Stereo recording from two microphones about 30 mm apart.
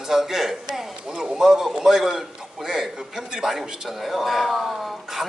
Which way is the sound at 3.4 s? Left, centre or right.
Centre.